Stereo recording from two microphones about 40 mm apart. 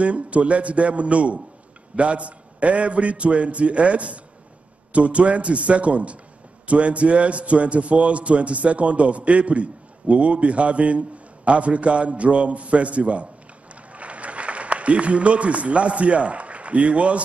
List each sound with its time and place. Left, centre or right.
0.0 s a man's voice: right